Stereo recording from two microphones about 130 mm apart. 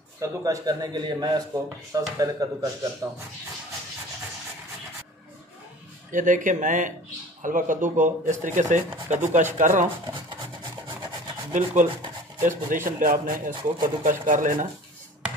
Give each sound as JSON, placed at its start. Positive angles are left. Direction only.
{"t": 0.2, "sound": "a man's voice", "side_deg": -30}
{"t": 6.1, "sound": "speech", "side_deg": -85}
{"t": 7.4, "sound": "speech", "side_deg": -90}
{"t": 10.1, "sound": "rub", "side_deg": -40}
{"t": 11.5, "sound": "speech", "side_deg": -70}
{"t": 12.4, "sound": "speech", "side_deg": -90}